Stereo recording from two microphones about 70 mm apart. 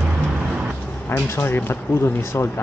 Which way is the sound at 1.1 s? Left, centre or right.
Left.